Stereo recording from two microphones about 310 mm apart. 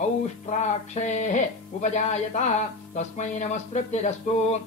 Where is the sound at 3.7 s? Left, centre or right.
Left.